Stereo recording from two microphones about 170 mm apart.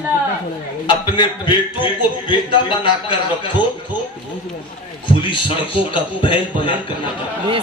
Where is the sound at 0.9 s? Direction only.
30° left (ahead or behind).